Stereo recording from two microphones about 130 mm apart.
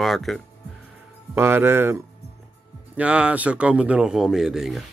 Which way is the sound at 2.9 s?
10° right (ahead or behind).